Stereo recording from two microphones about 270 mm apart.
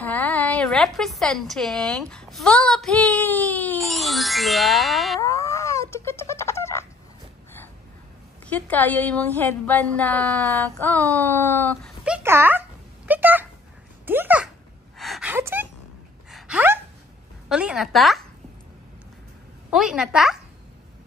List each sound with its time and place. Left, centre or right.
0.0 s a woman's voice: centre
5.2 s fowl: centre
8.5 s a woman's voice: centre
12.0 s a sound: centre
15.0 s gasp: centre
17.5 s a woman's voice: centre
19.7 s a woman's voice: centre